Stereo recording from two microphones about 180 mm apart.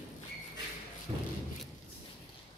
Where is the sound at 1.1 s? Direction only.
30° right (ahead or behind).